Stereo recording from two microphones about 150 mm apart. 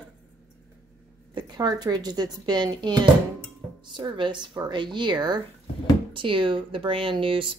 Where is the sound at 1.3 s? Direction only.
30° right (ahead or behind).